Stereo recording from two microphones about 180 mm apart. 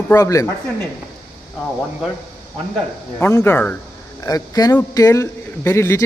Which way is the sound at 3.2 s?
15° left (ahead or behind).